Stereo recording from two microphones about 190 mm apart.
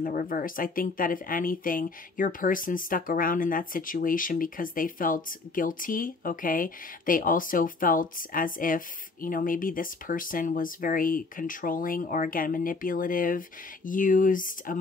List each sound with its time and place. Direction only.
0.0 s speech: 45° left (ahead or behind)